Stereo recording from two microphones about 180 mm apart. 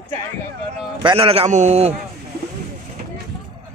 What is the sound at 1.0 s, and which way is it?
Speech, 30° right (ahead or behind).